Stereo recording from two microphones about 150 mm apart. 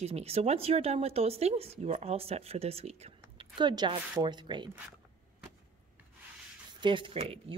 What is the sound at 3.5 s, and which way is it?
Speech, 30° right (ahead or behind).